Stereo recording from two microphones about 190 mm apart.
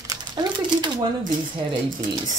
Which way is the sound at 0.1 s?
20° right (ahead or behind).